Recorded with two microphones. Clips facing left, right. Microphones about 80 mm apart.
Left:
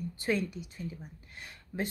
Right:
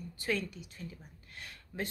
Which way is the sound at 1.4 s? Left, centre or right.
Centre.